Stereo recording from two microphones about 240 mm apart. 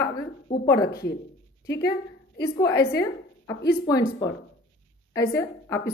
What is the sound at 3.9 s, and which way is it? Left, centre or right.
A woman's voice, centre.